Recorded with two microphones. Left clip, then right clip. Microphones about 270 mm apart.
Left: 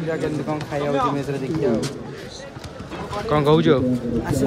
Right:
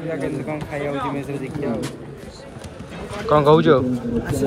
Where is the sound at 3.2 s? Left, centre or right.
Centre.